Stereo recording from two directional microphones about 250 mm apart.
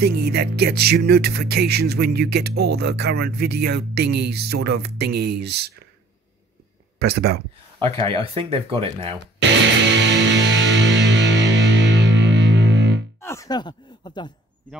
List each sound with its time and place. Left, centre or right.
0.0 s music: right
7.0 s music: right
7.8 s speech: right
9.9 s music: right
13.2 s a sound: centre